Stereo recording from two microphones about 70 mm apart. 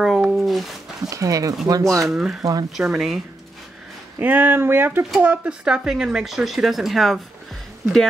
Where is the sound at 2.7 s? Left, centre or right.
Centre.